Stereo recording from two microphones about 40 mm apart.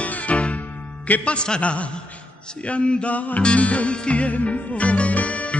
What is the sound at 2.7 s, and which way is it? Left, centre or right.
Music, left.